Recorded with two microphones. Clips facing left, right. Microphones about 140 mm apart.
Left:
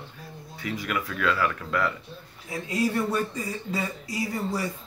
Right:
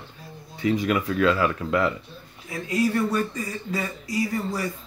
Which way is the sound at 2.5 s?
25° left (ahead or behind).